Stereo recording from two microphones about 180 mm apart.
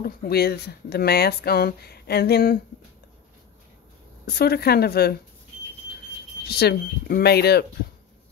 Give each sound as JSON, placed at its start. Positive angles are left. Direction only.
{"t": 0.0, "sound": "speech", "side_deg": 60}
{"t": 4.3, "sound": "speech", "side_deg": 60}
{"t": 6.4, "sound": "speech", "side_deg": 60}